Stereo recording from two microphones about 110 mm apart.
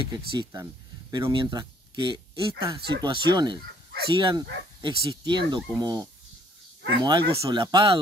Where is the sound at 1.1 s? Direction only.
50° right (ahead or behind).